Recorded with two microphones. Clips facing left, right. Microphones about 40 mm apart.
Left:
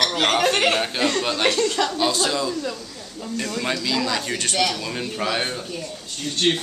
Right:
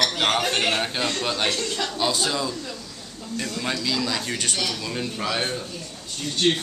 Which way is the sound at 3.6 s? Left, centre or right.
Centre.